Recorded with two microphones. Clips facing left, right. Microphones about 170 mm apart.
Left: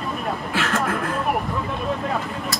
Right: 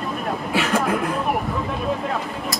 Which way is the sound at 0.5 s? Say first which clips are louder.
Right 4 dB; 15° right (ahead or behind).